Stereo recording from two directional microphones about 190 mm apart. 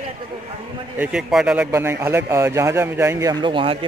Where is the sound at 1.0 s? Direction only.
5° right (ahead or behind); by 3.8 s 25° right (ahead or behind).